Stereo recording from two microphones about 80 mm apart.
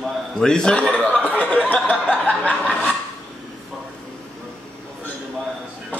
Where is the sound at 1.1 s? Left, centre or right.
Centre.